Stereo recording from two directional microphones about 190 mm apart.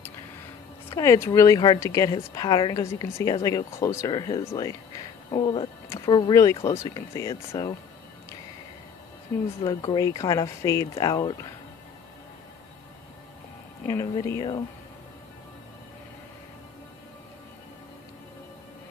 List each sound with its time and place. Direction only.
0.8 s speech: 15° left (ahead or behind)
9.7 s speech: 20° left (ahead or behind)
13.8 s speech: 15° left (ahead or behind)